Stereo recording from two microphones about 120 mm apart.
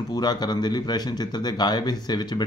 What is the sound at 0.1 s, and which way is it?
Speech, 35° left (ahead or behind).